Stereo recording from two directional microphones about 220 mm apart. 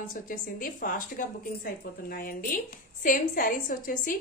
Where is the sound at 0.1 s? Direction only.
40° left (ahead or behind).